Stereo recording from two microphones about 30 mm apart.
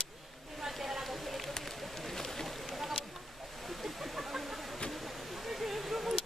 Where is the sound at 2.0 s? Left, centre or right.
Centre.